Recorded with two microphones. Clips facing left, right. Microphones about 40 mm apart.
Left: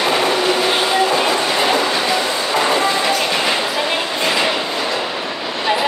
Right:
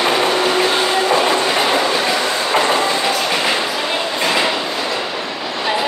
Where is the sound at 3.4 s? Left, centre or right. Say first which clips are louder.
Even; centre.